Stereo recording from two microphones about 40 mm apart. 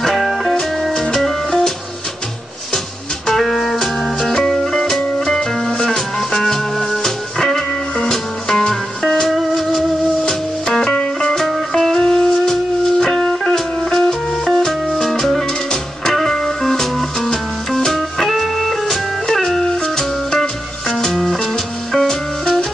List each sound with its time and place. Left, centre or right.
0.0 s music: centre
3.3 s music: centre
5.7 s music: left
5.9 s music: centre
9.3 s music: centre
10.2 s music: centre